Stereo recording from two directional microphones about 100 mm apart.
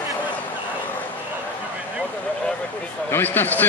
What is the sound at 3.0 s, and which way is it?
Speech, 20° left (ahead or behind).